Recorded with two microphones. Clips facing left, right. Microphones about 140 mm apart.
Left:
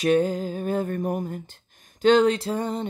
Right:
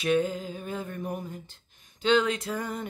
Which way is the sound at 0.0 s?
40° left (ahead or behind).